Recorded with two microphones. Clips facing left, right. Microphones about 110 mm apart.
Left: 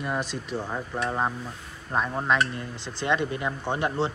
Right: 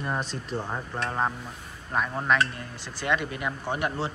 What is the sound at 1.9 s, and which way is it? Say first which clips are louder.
Speech: left 1 dB; 20° left (ahead or behind).